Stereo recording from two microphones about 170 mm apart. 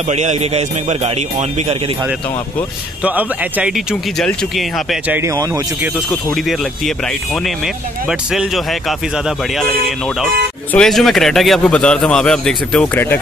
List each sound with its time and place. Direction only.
0.1 s a man's voice: 40° right (ahead or behind)
3.0 s a man's voice: 10° right (ahead or behind)
5.0 s speech: 15° right (ahead or behind)
5.9 s a man's voice: centre (ahead or behind)